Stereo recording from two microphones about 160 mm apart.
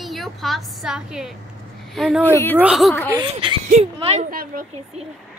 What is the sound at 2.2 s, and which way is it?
Speech, 15° left (ahead or behind).